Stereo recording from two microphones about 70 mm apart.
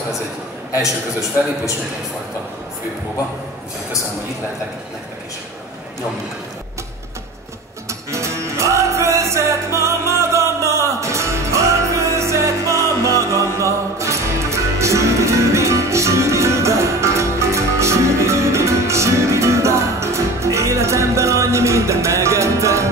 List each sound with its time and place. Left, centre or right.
8.1 s music: right